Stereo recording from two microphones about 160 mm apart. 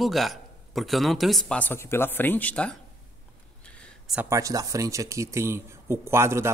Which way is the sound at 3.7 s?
5° left (ahead or behind).